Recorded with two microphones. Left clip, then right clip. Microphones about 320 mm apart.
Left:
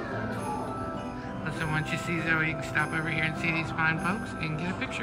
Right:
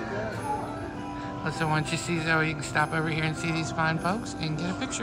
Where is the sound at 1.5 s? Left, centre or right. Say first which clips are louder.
Right 3 dB; centre.